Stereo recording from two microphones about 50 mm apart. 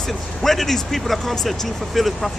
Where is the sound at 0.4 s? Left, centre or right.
Centre.